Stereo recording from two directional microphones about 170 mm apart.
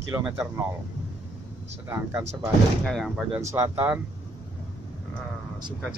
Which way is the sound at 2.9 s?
Centre (ahead or behind).